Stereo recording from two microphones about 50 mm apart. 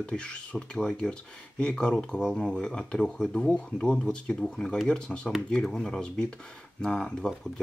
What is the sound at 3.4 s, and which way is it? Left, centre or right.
Speech, left.